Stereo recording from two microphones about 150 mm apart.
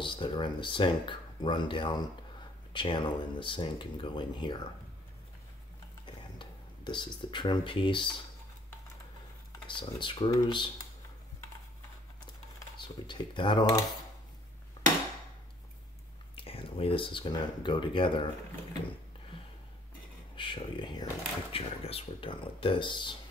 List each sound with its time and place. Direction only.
0.0 s speech: 35° left (ahead or behind)
6.3 s speech: 30° left (ahead or behind)
9.7 s speech: 35° left (ahead or behind)
12.7 s speech: 30° left (ahead or behind)
16.3 s speech: 40° left (ahead or behind)
20.3 s speech: 35° left (ahead or behind)